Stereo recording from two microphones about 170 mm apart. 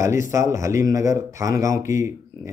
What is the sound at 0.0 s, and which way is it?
A man's voice, 15° right (ahead or behind).